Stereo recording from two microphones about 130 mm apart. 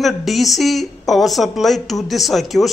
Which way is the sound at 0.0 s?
Centre (ahead or behind).